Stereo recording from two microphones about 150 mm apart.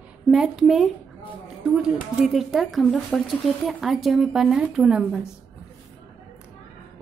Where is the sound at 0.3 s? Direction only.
Centre (ahead or behind).